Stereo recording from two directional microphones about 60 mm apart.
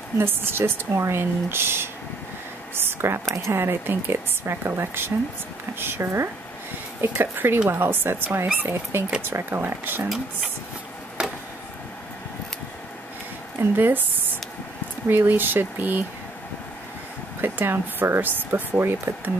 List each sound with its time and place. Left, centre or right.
0.2 s speech: right
13.6 s speech: right
17.4 s speech: right